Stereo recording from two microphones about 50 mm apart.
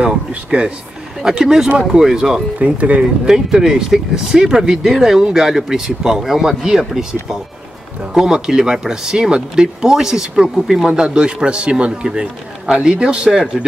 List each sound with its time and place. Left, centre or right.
0.3 s a man's voice: right
1.2 s speech: centre
2.6 s a man's voice: right
3.3 s speech: centre
10.9 s a man's voice: right